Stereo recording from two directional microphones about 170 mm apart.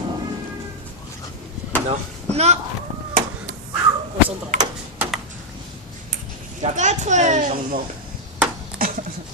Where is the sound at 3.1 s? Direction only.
50° right (ahead or behind).